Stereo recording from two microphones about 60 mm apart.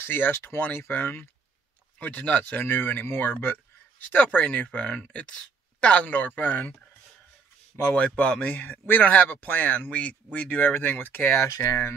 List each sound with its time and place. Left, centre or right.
0.0 s speech: left
7.8 s speech: left
11.2 s speech: left